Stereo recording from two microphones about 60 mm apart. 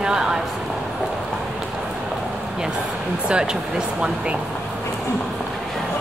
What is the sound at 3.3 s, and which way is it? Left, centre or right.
Speech, centre.